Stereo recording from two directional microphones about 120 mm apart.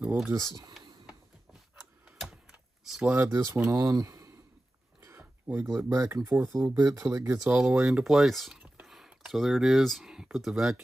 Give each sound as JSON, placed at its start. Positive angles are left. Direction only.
{"t": 0.3, "sound": "speech", "side_deg": -30}
{"t": 0.7, "sound": "a sound", "side_deg": -5}
{"t": 2.0, "sound": "computer keyboard", "side_deg": -10}
{"t": 3.1, "sound": "speech", "side_deg": -20}
{"t": 5.0, "sound": "speech", "side_deg": -20}
{"t": 7.5, "sound": "speech", "side_deg": -10}